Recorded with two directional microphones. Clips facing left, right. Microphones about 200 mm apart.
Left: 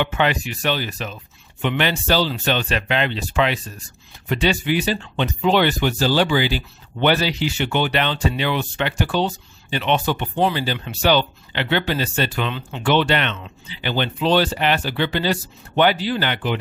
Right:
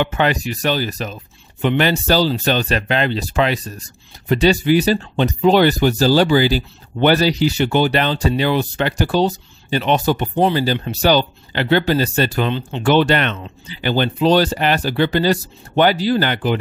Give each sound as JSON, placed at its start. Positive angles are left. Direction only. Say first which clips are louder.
{"t": 0.0, "sound": "speech", "louder": "right 3 dB", "side_deg": -40}
{"t": 12.9, "sound": "speech", "louder": "right 4 dB", "side_deg": -45}